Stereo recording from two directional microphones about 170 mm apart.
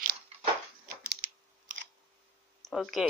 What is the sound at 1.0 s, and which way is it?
Typing, 55° right (ahead or behind).